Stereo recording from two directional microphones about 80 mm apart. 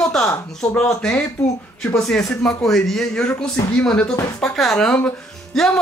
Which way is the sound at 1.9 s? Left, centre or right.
Centre.